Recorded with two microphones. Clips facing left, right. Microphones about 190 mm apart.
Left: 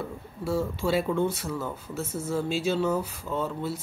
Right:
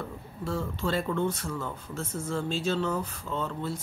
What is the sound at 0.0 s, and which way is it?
Speech, 10° left (ahead or behind).